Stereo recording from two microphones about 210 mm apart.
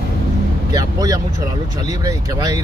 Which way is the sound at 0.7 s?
15° right (ahead or behind).